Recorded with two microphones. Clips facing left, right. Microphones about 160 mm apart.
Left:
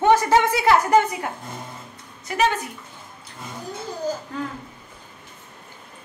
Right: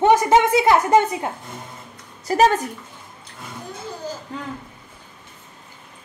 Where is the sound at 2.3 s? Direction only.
40° right (ahead or behind).